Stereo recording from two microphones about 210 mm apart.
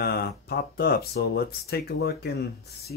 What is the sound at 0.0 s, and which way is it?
Speech, 50° left (ahead or behind).